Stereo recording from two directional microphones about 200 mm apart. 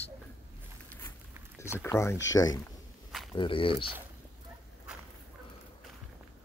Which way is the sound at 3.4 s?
25° left (ahead or behind).